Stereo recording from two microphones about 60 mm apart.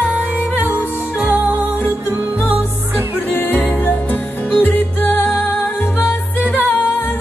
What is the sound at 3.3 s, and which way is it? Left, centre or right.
Music, left.